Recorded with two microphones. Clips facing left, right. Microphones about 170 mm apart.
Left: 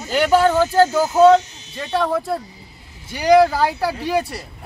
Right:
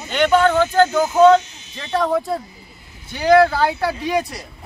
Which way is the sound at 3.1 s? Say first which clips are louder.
Even; 10° left (ahead or behind).